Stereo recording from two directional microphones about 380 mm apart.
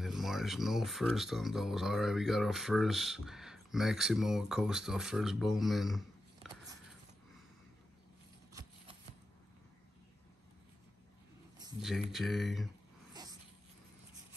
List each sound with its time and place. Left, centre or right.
0.0 s speech: centre
11.5 s speech: centre
13.1 s a sound: centre